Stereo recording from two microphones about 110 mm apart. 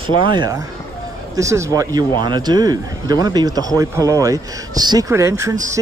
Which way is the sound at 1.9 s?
40° right (ahead or behind).